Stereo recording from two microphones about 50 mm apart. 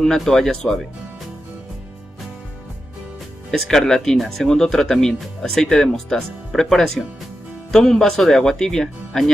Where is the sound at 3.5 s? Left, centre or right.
Centre.